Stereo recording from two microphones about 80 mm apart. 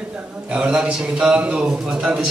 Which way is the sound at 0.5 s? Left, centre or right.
Centre.